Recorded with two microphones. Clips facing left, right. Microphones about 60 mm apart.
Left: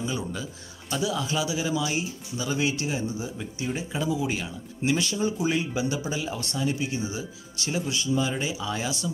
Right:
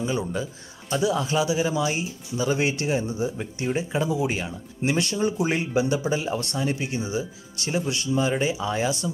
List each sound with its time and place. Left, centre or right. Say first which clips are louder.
0.0 s speech: right 4 dB; right
2.6 s speech: right 3 dB; right
7.0 s speech: right 4 dB; right